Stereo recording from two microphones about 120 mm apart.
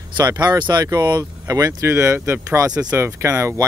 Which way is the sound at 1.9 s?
25° right (ahead or behind).